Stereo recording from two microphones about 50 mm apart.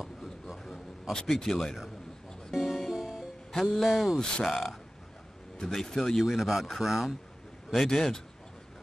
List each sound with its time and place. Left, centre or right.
0.0 s a sound: centre
1.4 s speech: centre
2.5 s music: centre
3.5 s speech: centre
3.8 s speech: centre
4.2 s speech: centre
5.7 s speech: centre
6.2 s speech: centre
7.7 s speech: centre